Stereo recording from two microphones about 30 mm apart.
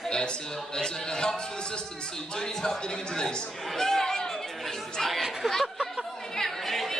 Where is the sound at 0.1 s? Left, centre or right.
Left.